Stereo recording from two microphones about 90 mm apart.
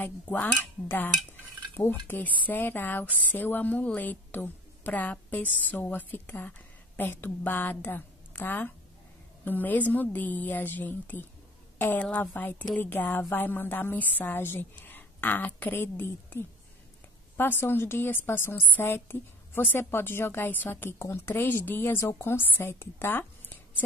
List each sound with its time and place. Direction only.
0.0 s a woman's voice: 20° left (ahead or behind)